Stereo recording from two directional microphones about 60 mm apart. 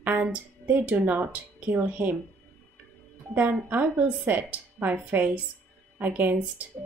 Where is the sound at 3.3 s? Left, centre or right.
Right.